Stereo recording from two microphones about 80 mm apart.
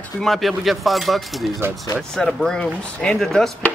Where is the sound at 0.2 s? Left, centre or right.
Centre.